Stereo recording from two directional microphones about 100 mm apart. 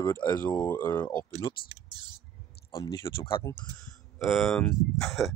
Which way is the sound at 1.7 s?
45° right (ahead or behind).